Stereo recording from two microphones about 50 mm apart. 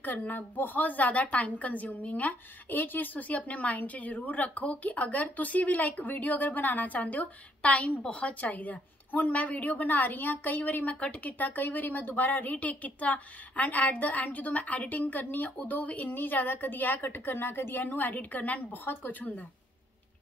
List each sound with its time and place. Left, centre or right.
0.0 s a woman's voice: left